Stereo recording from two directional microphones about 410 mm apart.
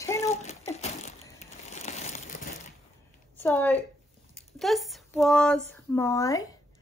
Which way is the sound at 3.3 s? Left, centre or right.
Centre.